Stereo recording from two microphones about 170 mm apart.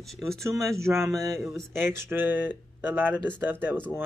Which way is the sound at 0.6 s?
15° right (ahead or behind).